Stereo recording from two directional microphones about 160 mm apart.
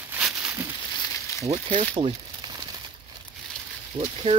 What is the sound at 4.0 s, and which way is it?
Speech, 40° right (ahead or behind).